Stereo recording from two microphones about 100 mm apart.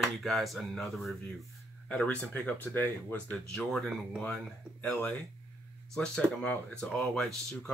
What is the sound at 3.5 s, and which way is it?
Speech, 5° left (ahead or behind).